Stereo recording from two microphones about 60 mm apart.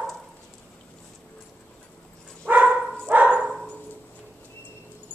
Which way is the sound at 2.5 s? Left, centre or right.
Right.